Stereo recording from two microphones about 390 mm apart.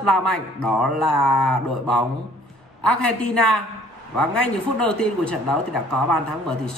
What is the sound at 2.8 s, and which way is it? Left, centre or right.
A woman's voice, left.